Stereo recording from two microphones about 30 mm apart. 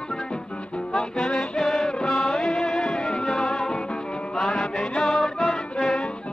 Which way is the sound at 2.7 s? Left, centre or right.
Left.